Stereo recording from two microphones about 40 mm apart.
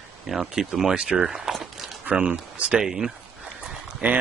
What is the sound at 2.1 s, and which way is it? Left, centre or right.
Speech, right.